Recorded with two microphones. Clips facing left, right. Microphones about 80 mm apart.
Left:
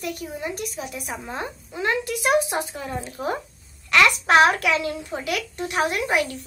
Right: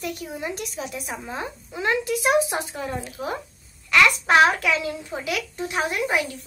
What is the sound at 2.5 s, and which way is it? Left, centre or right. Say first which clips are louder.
Speech: left 1 dB; right.